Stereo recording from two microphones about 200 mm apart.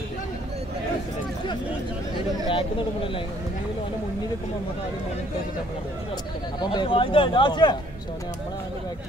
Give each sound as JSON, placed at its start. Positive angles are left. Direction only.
{"t": 2.4, "sound": "speech", "side_deg": 25}
{"t": 6.6, "sound": "speech", "side_deg": 20}